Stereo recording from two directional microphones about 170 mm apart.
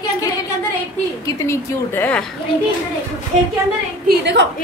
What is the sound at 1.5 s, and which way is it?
Speech, 10° left (ahead or behind).